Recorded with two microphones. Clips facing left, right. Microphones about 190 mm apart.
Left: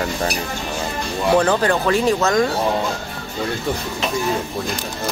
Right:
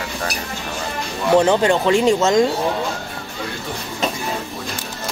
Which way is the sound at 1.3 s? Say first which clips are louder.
Right 3 dB; 20° right (ahead or behind).